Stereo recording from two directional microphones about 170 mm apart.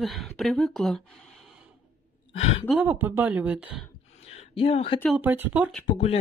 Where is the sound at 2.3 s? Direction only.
35° left (ahead or behind).